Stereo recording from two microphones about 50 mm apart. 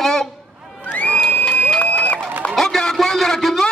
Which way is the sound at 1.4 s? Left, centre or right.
Left.